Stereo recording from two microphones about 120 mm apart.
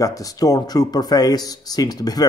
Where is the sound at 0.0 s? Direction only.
30° left (ahead or behind).